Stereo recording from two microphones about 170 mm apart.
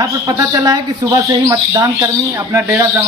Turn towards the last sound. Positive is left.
turn(degrees=-15)  # may be behind; listen again after turning